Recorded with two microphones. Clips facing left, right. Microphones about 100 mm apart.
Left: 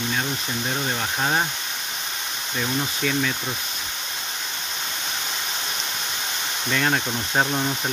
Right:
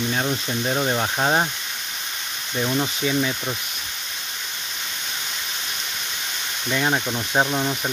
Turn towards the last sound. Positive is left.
turn(degrees=-5)  # may be behind; listen again after turning